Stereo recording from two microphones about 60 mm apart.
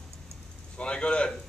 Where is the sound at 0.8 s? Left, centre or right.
Centre.